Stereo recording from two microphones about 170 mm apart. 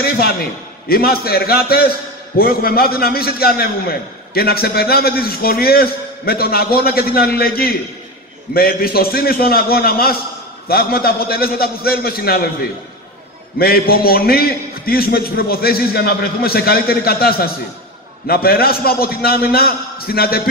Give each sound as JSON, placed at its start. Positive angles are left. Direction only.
{"t": 0.8, "sound": "a man's voice", "side_deg": 65}
{"t": 13.6, "sound": "a man's voice", "side_deg": 65}